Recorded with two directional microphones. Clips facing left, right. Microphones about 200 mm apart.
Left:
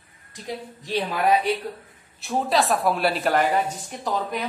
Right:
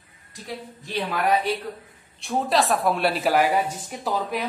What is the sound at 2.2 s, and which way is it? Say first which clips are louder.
A woman's voice: even; centre (ahead or behind).